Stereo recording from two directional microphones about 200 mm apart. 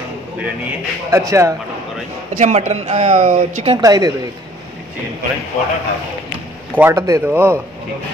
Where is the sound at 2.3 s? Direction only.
35° right (ahead or behind).